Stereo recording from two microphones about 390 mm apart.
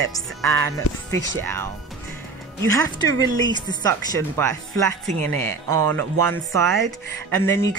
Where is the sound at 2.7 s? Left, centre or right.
Centre.